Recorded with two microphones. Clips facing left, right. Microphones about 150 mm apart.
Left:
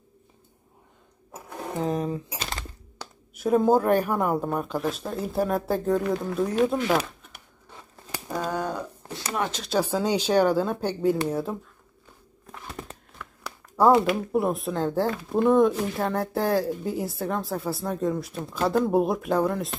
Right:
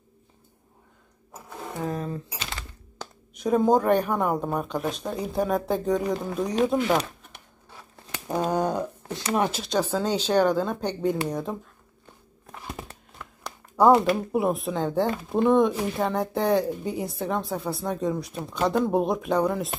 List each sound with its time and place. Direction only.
1.6 s a sound: 20° left (ahead or behind)
3.0 s speech: 5° left (ahead or behind)
8.5 s speech: 20° right (ahead or behind)
9.6 s speech: 10° left (ahead or behind)
13.4 s speech: centre (ahead or behind)